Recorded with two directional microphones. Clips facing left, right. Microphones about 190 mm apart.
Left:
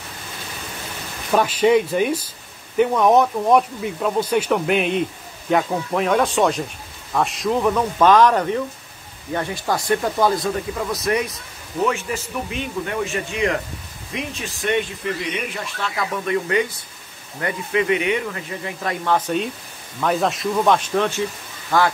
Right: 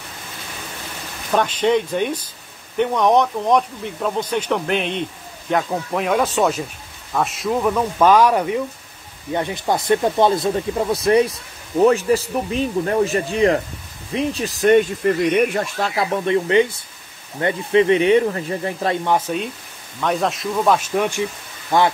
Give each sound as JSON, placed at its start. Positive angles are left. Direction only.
{"t": 1.3, "sound": "speech", "side_deg": 10}
{"t": 15.9, "sound": "speech", "side_deg": -30}
{"t": 19.0, "sound": "speech", "side_deg": -10}